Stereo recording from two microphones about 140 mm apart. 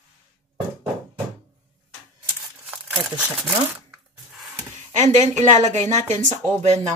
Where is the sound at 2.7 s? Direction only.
10° right (ahead or behind).